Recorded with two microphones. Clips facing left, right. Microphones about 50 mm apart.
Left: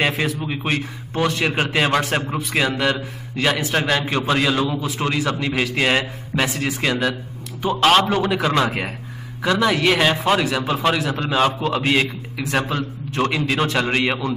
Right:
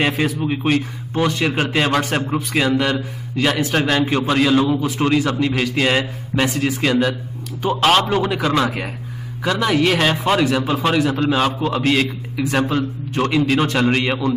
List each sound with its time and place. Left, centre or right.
0.0 s a man's voice: centre
1.4 s a man's voice: centre
8.6 s speech: centre
9.4 s a man's voice: centre